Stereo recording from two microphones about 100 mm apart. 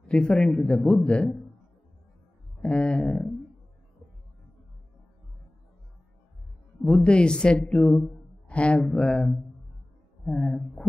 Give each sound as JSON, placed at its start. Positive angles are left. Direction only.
{"t": 0.0, "sound": "speech", "side_deg": 10}
{"t": 2.6, "sound": "speech", "side_deg": 10}
{"t": 6.8, "sound": "speech", "side_deg": 10}